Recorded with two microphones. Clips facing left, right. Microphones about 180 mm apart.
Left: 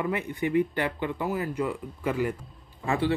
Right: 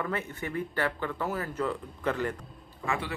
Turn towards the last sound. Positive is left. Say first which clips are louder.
# left 6 dB
turn(degrees=30)  # may be behind; listen again after turning